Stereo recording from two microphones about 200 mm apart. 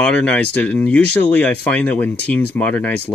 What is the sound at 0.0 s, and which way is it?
Speech, 5° left (ahead or behind).